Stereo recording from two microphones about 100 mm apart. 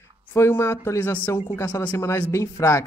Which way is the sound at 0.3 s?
25° left (ahead or behind).